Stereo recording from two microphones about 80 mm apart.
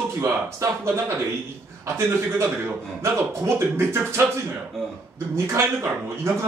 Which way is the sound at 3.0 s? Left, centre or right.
Right.